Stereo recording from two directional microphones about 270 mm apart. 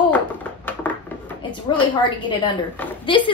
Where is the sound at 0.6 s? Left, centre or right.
Centre.